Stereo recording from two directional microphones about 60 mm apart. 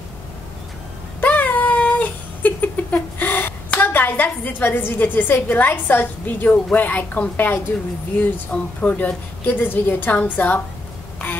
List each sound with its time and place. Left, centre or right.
1.2 s cat: left
3.7 s a woman's voice: left
9.5 s a woman's voice: left